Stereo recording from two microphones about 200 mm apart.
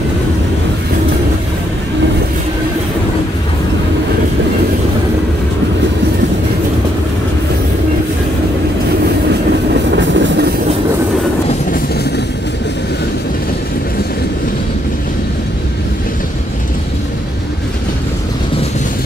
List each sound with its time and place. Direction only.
9.9 s train: 65° right (ahead or behind)
11.4 s vehicle: 50° left (ahead or behind)